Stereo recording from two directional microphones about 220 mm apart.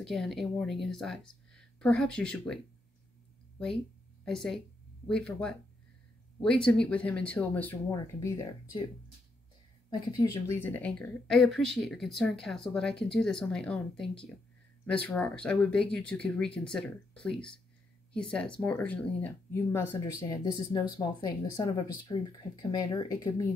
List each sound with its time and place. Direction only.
0.0 s speech: centre (ahead or behind)
3.5 s a sound: 5° left (ahead or behind)
5.0 s speech: 5° left (ahead or behind)
10.5 s speech: 10° left (ahead or behind)